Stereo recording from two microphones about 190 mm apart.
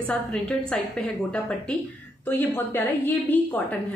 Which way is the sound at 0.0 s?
5° left (ahead or behind).